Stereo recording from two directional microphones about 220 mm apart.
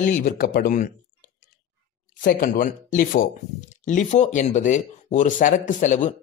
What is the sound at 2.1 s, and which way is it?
Speech, 40° left (ahead or behind).